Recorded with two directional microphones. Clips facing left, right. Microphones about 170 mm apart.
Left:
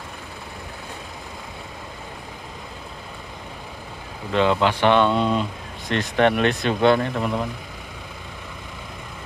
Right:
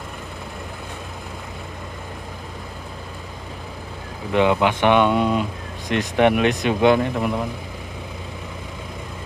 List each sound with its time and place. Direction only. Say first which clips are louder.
4.3 s speech: right 2 dB; 15° right (ahead or behind)